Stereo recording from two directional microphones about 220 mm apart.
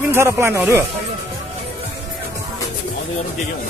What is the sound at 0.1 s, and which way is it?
Speech, 10° right (ahead or behind).